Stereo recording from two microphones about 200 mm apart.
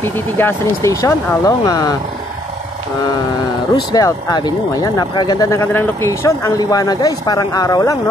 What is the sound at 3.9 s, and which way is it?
Speech, 20° left (ahead or behind).